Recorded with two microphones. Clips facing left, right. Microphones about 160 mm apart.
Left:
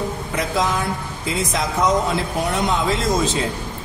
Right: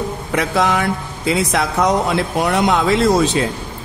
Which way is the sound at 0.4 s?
70° right (ahead or behind).